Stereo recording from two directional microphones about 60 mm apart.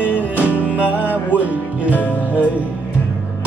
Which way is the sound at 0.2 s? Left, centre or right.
Right.